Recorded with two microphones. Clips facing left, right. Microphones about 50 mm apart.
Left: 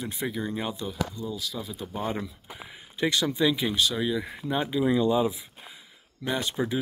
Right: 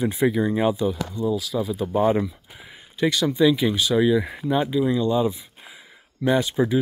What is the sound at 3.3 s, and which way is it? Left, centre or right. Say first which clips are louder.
Speech: right 6 dB; centre.